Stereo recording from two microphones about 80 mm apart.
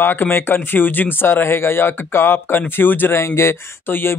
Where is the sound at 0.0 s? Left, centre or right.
Left.